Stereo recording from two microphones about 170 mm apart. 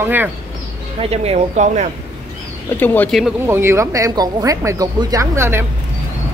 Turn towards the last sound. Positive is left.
turn(degrees=-15)  # may be behind; listen again after turning